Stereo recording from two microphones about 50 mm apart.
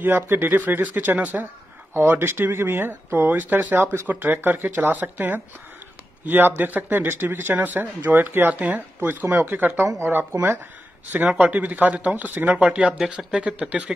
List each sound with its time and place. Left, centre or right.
0.0 s speech: right
2.0 s speech: right
4.1 s speech: right
8.6 s speech: right
9.8 s speech: right
11.3 s speech: right